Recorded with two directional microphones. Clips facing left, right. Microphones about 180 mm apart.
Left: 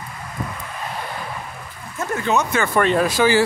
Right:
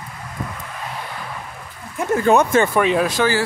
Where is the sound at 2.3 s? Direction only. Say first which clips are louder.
Right 6 dB; 50° right (ahead or behind).